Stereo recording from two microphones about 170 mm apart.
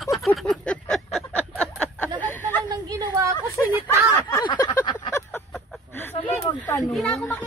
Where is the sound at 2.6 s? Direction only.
25° right (ahead or behind).